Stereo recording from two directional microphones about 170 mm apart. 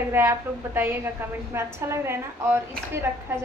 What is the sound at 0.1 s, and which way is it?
A woman's voice, 15° right (ahead or behind).